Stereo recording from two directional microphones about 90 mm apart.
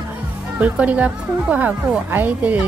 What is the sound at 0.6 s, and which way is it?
A woman's voice, 15° right (ahead or behind).